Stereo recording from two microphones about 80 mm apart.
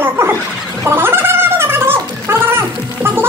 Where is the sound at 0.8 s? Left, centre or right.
Right.